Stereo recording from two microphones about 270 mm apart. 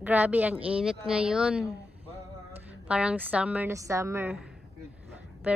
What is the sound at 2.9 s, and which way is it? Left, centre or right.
A woman's voice, centre.